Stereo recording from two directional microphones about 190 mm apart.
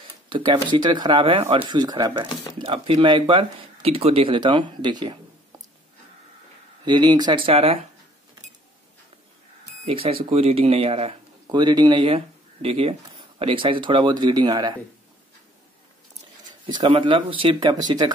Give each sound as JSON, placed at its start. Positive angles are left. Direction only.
{"t": 0.3, "sound": "speech", "side_deg": -25}
{"t": 6.8, "sound": "speech", "side_deg": -25}
{"t": 9.8, "sound": "speech", "side_deg": -30}
{"t": 16.6, "sound": "speech", "side_deg": -25}